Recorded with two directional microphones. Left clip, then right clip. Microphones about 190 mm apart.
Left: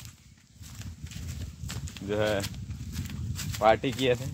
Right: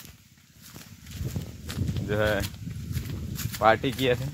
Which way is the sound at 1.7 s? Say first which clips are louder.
Right 2 dB; 15° right (ahead or behind).